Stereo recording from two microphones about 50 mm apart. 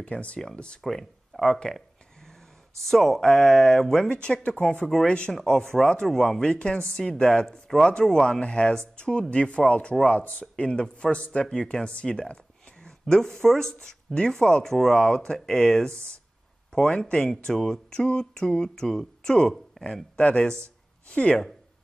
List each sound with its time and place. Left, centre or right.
0.0 s speech: left
0.8 s speech: centre
2.8 s speech: centre; by 5.3 s left
5.3 s speech: centre
6.4 s speech: left
10.1 s speech: left
10.6 s speech: centre
11.4 s speech: centre
17.0 s speech: centre
20.2 s speech: left